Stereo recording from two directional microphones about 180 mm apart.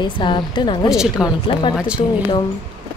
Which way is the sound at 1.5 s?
25° left (ahead or behind).